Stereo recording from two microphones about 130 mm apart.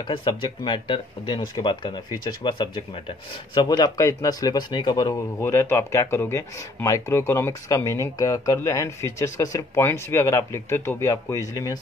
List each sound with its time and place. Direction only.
0.0 s speech: 40° left (ahead or behind)